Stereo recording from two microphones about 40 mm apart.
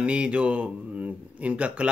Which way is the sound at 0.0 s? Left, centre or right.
Right.